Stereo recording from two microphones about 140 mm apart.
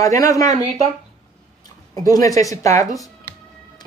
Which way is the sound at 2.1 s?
25° left (ahead or behind).